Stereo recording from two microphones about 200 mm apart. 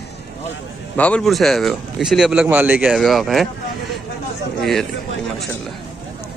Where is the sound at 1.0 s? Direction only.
5° left (ahead or behind).